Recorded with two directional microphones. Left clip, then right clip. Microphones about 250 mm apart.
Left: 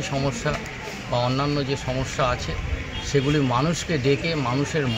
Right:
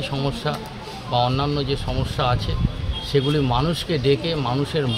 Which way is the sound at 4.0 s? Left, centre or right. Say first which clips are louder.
Right 2 dB; centre.